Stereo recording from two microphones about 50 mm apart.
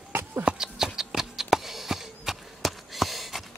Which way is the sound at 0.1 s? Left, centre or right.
Right.